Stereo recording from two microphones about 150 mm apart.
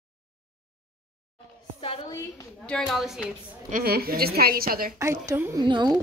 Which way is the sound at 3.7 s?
90° right.